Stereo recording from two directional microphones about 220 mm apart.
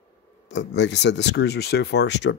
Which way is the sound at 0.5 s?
50° left (ahead or behind).